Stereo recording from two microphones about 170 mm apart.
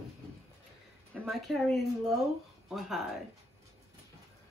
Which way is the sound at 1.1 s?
Centre (ahead or behind).